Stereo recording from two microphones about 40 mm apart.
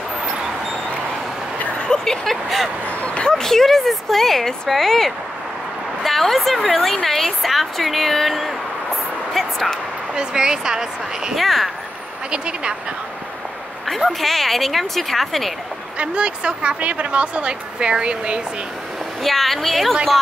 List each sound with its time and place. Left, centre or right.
1.9 s a sound: centre
2.9 s vehicle: left
3.3 s a woman's voice: centre
9.3 s a sound: centre
10.1 s a woman's voice: centre
11.3 s a woman's voice: centre
12.3 s a woman's voice: right
13.8 s a woman's voice: centre
16.0 s a woman's voice: right
19.2 s a woman's voice: centre